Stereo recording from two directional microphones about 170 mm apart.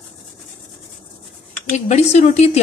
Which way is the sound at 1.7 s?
45° left (ahead or behind).